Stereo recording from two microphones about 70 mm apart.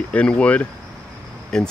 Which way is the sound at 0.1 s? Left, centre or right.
Centre.